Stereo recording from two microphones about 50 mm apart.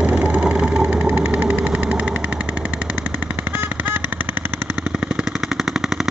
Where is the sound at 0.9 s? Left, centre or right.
Right.